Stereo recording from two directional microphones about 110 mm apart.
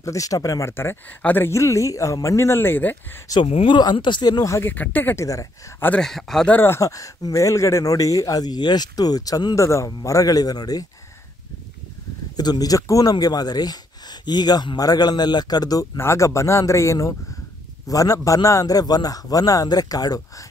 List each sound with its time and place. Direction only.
0.0 s speech: 30° left (ahead or behind)
3.4 s speech: 65° left (ahead or behind)
3.7 s speech: 45° left (ahead or behind)
4.6 s speech: 15° left (ahead or behind)
5.2 s speech: 30° left (ahead or behind)
5.9 s speech: 5° left (ahead or behind)
6.5 s speech: 20° left (ahead or behind)
12.4 s speech: 35° left (ahead or behind)
16.0 s speech: 25° left (ahead or behind)